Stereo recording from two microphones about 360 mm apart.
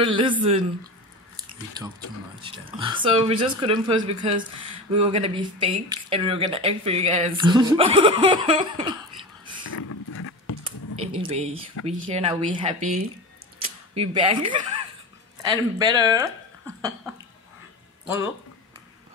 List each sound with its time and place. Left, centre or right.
0.0 s speech: centre
1.8 s speech: centre
9.7 s a sound: left
11.0 s speech: centre
13.6 s scissors: centre
15.4 s speech: centre